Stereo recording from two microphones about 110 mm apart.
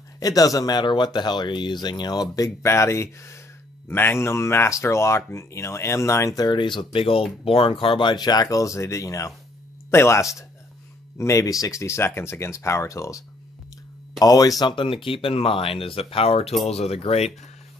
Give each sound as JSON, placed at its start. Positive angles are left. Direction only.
{"t": 0.2, "sound": "speech", "side_deg": 30}
{"t": 14.6, "sound": "speech", "side_deg": 45}